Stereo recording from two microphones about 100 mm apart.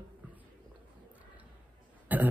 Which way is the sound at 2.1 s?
15° right (ahead or behind).